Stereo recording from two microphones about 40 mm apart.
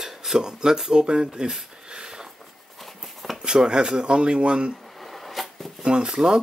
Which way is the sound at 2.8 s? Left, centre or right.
Centre.